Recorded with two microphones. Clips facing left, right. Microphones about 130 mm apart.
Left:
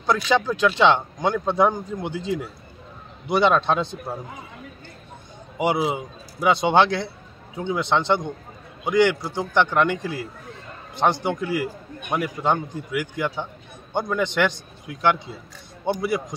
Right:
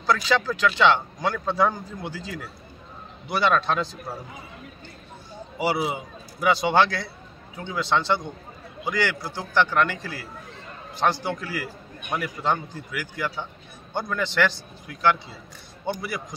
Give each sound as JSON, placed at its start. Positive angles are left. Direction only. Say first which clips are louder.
{"t": 0.0, "sound": "a man's voice", "louder": "left 2 dB", "side_deg": 20}
{"t": 5.6, "sound": "a man's voice", "louder": "left 3 dB", "side_deg": 20}